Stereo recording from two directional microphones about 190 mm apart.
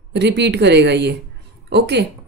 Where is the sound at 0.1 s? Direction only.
65° right (ahead or behind).